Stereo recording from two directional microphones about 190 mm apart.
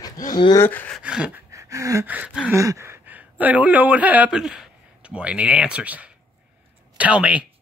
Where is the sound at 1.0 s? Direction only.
5° right (ahead or behind).